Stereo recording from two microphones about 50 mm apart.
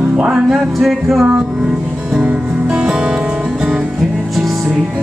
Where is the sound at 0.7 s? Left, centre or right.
Centre.